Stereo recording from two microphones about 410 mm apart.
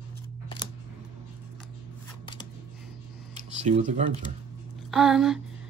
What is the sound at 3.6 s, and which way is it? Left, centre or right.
Speech, centre.